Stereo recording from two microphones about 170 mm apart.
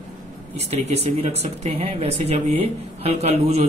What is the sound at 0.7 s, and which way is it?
Speech, 40° right (ahead or behind).